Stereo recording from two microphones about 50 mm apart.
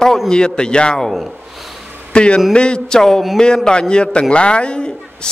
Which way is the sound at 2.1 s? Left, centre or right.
Left.